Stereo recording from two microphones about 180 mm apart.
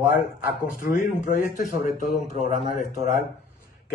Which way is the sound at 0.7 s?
50° left (ahead or behind).